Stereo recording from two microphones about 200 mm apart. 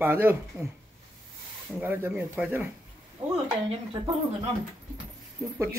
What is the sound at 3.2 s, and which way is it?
Speech, 25° right (ahead or behind).